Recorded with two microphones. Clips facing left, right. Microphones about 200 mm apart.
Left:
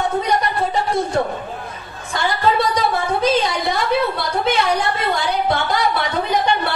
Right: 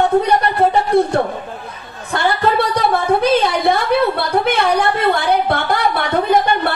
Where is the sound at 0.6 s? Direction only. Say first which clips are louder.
Right 6 dB; 60° right (ahead or behind).